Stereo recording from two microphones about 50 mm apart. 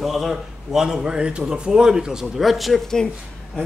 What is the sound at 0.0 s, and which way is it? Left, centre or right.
A man's voice, centre.